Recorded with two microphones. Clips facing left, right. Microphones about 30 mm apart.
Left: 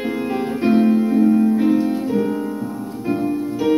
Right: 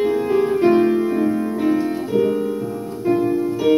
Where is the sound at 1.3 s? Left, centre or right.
Centre.